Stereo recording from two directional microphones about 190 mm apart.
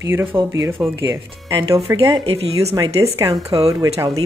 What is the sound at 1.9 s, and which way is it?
A woman's voice, 30° right (ahead or behind).